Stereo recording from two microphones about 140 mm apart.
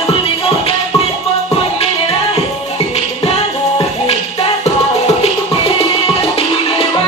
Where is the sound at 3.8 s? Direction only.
45° left (ahead or behind).